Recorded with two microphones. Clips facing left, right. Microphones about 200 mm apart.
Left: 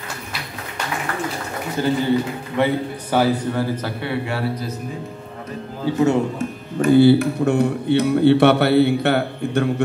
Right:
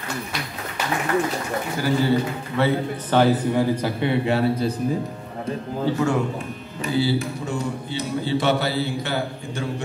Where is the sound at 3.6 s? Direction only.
15° right (ahead or behind).